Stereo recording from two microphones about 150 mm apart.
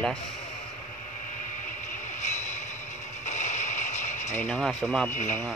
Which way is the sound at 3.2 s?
55° left (ahead or behind).